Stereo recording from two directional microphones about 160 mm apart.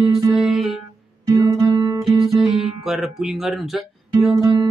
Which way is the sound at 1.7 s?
30° right (ahead or behind).